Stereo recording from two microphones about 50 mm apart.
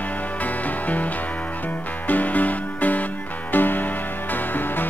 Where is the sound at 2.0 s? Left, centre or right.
Left.